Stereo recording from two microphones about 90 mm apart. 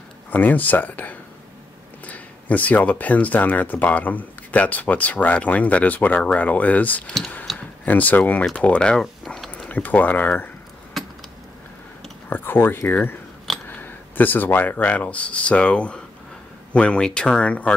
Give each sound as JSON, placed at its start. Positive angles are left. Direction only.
{"t": 0.3, "sound": "speech", "side_deg": 20}
{"t": 7.5, "sound": "tick-tock", "side_deg": 0}
{"t": 7.8, "sound": "speech", "side_deg": 20}
{"t": 9.0, "sound": "a sound", "side_deg": 0}
{"t": 9.5, "sound": "speech", "side_deg": 15}
{"t": 10.9, "sound": "keys jangling", "side_deg": 0}
{"t": 12.3, "sound": "speech", "side_deg": 25}